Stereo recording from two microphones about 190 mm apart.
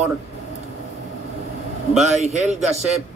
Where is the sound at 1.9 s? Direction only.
35° right (ahead or behind).